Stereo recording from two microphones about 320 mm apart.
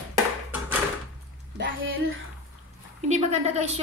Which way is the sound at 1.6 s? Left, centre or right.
Right.